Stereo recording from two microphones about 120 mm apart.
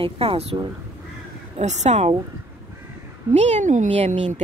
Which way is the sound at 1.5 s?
70° right (ahead or behind).